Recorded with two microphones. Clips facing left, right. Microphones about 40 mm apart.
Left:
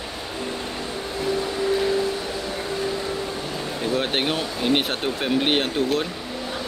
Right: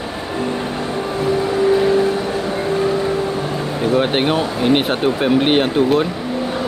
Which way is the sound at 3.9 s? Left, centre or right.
Centre.